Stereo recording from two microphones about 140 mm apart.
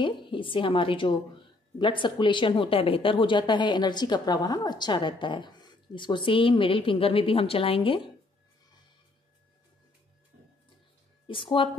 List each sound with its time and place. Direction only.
0.0 s speech: 35° left (ahead or behind)
11.2 s speech: 35° left (ahead or behind)